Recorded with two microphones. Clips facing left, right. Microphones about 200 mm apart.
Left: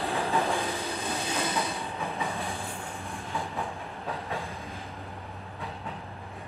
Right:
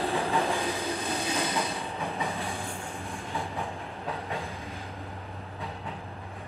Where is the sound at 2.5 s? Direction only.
15° right (ahead or behind).